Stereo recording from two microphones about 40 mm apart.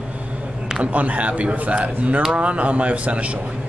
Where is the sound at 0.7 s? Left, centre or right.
Right.